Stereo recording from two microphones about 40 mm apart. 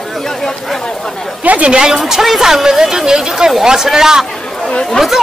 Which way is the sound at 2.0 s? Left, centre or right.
Centre.